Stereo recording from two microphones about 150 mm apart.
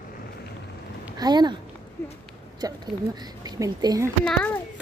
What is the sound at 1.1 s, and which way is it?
Speech, 30° right (ahead or behind).